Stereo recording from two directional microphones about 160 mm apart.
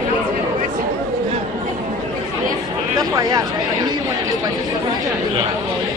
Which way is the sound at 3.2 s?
20° right (ahead or behind).